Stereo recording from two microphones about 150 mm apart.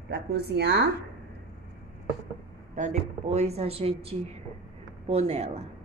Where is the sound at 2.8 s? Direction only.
60° right (ahead or behind).